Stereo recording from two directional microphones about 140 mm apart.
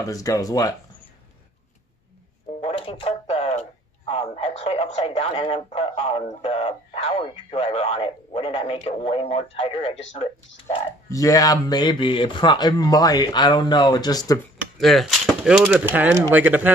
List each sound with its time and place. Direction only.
0.0 s speech: 25° left (ahead or behind)
2.6 s speech: 40° left (ahead or behind)
11.1 s speech: 25° left (ahead or behind)
14.8 s speech: centre (ahead or behind)
15.6 s speech: 15° right (ahead or behind)